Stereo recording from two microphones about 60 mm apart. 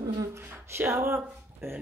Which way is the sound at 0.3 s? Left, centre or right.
Right.